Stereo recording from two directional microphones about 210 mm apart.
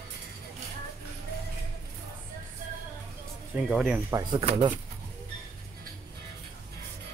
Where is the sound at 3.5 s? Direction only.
5° right (ahead or behind).